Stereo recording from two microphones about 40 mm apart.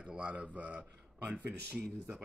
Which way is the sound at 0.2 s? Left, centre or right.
Right.